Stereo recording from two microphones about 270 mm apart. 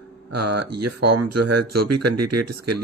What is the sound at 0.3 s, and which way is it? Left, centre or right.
Speech, right.